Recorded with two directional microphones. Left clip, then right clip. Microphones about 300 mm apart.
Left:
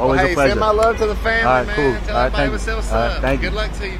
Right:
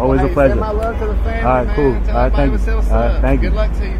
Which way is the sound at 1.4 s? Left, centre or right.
Centre.